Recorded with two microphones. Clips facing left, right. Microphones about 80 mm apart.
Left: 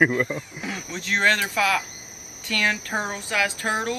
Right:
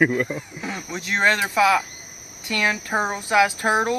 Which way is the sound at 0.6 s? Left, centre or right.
Right.